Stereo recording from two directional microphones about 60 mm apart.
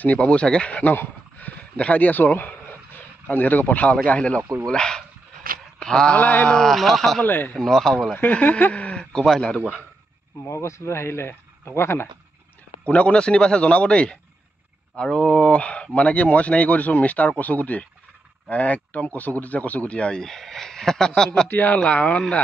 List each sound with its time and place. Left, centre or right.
0.0 s a man's voice: left
5.8 s a sound: centre
6.1 s speech: left
6.5 s speech: centre
7.2 s speech: left
7.5 s a man's voice: centre
8.2 s a man's voice: left; by 9.6 s centre
10.4 s speech: left
12.8 s a man's voice: left
21.5 s speech: left